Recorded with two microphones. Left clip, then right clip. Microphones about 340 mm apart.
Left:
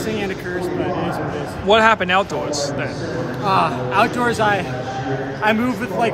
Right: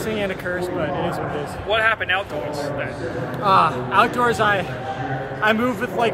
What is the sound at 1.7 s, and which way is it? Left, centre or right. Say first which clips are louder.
Speech: left 5 dB; centre.